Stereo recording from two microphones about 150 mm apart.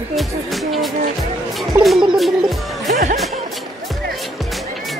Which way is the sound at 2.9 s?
60° right (ahead or behind).